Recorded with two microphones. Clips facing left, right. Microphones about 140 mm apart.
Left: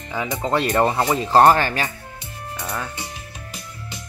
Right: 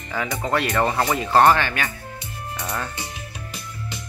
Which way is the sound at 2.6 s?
5° left (ahead or behind).